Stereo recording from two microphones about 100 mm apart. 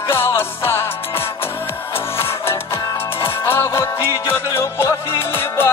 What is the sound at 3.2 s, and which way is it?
Music, 25° left (ahead or behind).